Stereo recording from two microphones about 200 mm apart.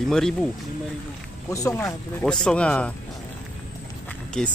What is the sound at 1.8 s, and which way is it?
A man's voice, centre (ahead or behind).